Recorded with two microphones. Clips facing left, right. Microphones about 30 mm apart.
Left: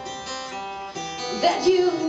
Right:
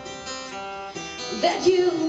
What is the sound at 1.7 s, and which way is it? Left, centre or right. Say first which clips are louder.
Music: left 1 dB; centre.